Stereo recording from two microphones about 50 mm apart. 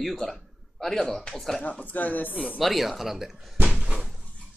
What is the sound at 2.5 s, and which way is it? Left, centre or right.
Speech, centre.